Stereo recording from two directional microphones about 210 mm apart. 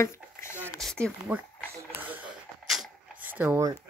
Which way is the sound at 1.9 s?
10° right (ahead or behind).